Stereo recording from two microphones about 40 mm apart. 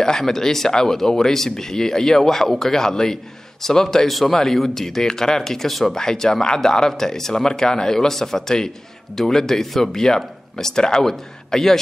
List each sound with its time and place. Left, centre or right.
0.0 s speech: centre
5.9 s speech: centre